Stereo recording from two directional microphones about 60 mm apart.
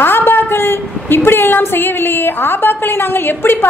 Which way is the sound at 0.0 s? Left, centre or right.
Left.